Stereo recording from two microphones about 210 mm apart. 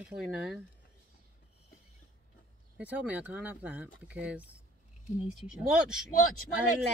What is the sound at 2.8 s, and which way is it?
Speech, 5° right (ahead or behind).